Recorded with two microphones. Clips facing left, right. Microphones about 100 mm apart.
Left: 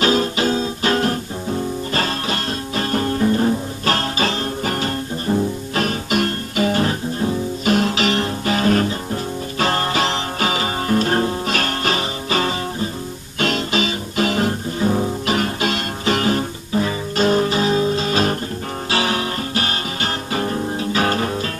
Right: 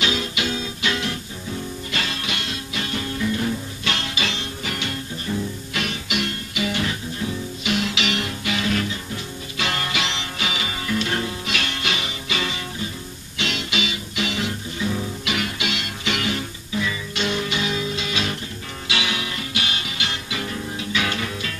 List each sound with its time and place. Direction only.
0.0 s guitar: 40° left (ahead or behind)
13.4 s music: 40° left (ahead or behind)